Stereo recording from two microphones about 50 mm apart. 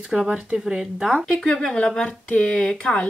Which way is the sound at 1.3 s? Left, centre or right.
Centre.